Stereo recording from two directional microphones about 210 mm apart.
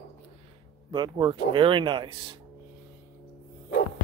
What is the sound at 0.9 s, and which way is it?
Speech, 20° right (ahead or behind).